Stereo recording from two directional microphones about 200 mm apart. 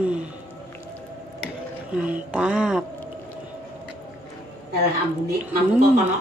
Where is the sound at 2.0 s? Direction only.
5° right (ahead or behind).